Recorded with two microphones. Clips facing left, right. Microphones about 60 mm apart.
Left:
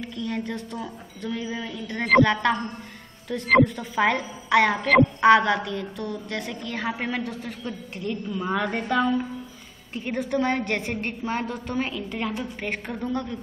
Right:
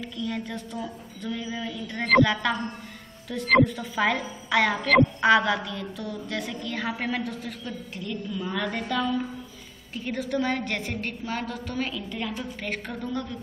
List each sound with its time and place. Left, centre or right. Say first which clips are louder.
0.1 s a woman's voice: left 2 dB; centre
0.6 s a woman's voice: left 1 dB; centre
1.3 s a woman's voice: left 1 dB; centre
6.7 s a woman's voice: left 1 dB; centre
8.0 s a woman's voice: left 4 dB; left
10.1 s a woman's voice: left 3 dB; centre
11.0 s a woman's voice: left 3 dB; left